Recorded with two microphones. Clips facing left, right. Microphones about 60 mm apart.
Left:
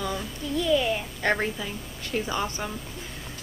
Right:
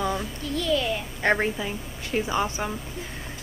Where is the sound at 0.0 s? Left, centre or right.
Centre.